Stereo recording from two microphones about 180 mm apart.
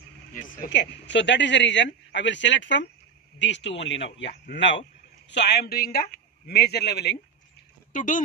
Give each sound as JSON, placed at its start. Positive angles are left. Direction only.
{"t": 0.3, "sound": "a sound", "side_deg": 45}
{"t": 0.7, "sound": "speech", "side_deg": 80}
{"t": 5.3, "sound": "speech", "side_deg": 70}
{"t": 7.9, "sound": "speech", "side_deg": 45}